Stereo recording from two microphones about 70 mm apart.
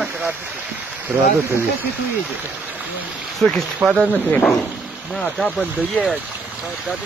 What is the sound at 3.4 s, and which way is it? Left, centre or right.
Speech, centre.